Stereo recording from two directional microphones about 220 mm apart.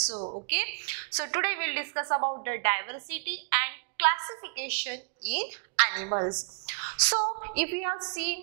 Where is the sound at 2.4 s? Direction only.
15° right (ahead or behind).